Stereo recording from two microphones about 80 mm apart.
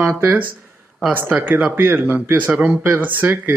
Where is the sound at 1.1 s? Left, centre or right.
Right.